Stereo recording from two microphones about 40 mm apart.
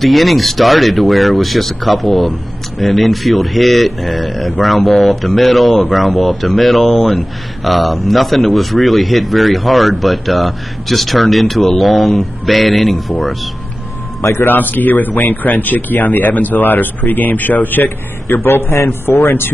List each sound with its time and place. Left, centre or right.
0.0 s speech: centre
14.5 s speech: left